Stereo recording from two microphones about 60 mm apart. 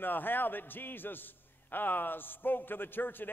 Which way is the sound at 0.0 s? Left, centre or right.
Left.